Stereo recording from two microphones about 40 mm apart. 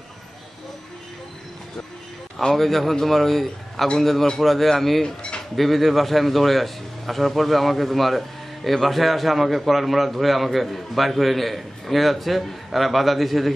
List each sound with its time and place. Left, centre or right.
2.5 s a man's voice: centre
5.0 s a sound: left
5.6 s a man's voice: centre